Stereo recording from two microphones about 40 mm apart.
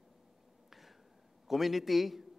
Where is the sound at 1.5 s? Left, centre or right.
Centre.